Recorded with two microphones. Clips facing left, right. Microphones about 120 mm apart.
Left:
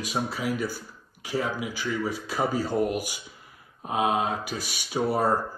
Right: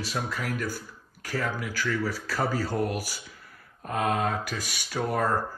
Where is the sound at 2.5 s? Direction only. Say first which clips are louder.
Left 3 dB; 45° right (ahead or behind).